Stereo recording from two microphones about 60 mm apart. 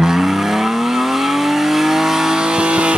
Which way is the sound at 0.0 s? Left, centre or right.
Centre.